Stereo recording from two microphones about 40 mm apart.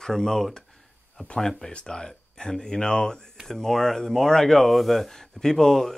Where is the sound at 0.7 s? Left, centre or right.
Centre.